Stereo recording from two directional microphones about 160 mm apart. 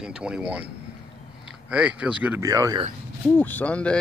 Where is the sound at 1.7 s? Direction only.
5° right (ahead or behind).